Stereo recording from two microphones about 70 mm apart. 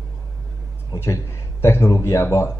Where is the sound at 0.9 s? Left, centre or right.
Left.